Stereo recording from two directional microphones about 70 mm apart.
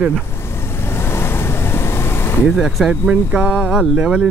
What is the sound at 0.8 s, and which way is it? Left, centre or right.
Vehicle, left.